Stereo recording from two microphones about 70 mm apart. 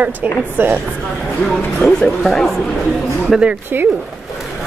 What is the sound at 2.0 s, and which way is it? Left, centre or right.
A woman's voice, centre.